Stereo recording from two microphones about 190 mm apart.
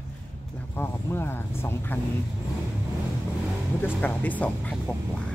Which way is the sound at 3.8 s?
10° left (ahead or behind).